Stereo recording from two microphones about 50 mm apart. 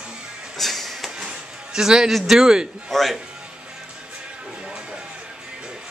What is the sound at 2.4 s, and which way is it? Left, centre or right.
Speech, centre.